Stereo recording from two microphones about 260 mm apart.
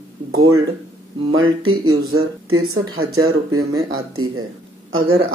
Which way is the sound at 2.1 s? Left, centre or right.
Right.